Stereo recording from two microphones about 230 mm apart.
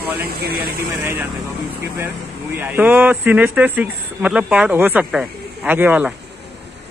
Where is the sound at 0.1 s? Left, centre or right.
Right.